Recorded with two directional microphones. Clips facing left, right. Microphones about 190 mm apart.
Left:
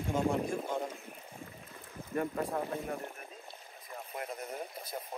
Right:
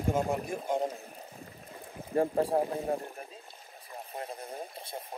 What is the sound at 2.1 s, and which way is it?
Speech, 30° right (ahead or behind).